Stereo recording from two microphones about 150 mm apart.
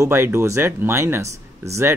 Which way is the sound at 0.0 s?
15° right (ahead or behind).